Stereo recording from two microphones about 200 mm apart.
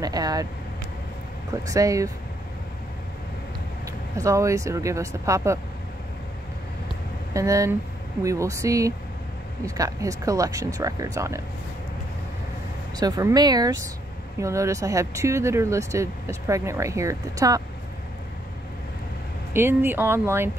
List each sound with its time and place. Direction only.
0.0 s speech: 20° right (ahead or behind)
1.5 s speech: 15° right (ahead or behind)
3.8 s speech: 15° right (ahead or behind)
7.3 s speech: 15° right (ahead or behind)
13.0 s speech: 20° right (ahead or behind)
19.5 s speech: 10° right (ahead or behind)